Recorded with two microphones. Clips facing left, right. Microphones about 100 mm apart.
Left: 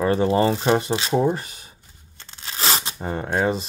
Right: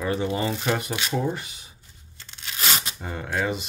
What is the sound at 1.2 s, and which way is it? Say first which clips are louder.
Speech: left 6 dB; 45° left (ahead or behind).